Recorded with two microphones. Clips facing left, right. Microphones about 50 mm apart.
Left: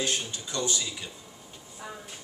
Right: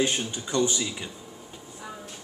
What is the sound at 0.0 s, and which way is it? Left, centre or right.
Speech, right.